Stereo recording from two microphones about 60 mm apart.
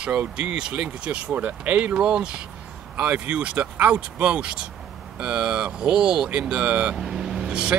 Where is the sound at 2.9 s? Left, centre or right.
Right.